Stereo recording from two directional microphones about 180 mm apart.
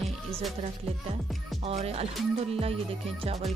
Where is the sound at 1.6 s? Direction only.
35° right (ahead or behind).